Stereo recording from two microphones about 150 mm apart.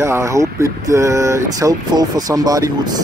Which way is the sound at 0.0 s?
20° right (ahead or behind).